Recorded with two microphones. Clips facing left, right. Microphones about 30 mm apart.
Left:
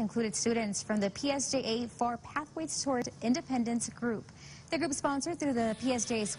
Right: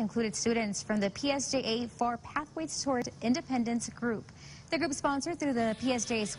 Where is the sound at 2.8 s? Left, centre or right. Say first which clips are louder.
Right 1 dB; centre.